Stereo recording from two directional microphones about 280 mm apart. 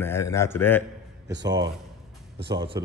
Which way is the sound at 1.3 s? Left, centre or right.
Right.